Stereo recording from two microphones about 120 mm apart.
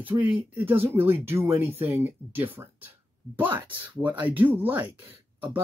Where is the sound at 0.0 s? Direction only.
15° right (ahead or behind).